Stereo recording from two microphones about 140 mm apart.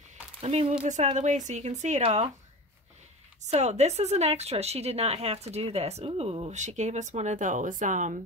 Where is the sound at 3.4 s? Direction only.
55° right (ahead or behind).